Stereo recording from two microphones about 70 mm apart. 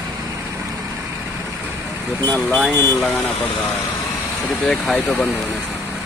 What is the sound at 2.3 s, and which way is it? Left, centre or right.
Speech, centre.